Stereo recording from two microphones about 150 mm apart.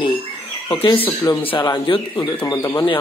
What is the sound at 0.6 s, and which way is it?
Speech, 30° left (ahead or behind).